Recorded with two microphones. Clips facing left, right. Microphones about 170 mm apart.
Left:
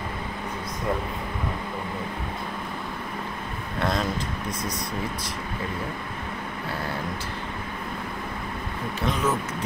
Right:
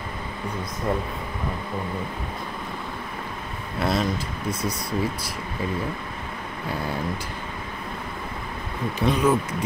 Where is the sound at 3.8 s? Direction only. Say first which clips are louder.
Right 2 dB; 10° right (ahead or behind).